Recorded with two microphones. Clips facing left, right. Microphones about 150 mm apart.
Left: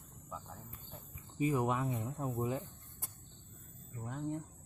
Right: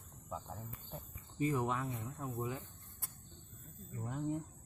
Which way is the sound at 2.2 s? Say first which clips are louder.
Left 4 dB; 25° left (ahead or behind).